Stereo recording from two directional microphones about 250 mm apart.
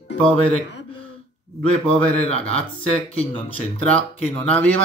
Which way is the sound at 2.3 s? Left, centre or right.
Left.